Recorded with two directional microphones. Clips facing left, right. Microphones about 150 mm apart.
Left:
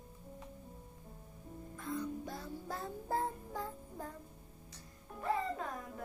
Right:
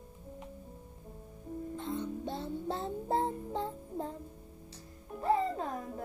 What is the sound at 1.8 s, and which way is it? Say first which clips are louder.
Music: right 1 dB; 25° right (ahead or behind).